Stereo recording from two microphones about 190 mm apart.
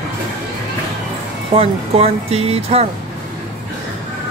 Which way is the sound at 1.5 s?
30° right (ahead or behind).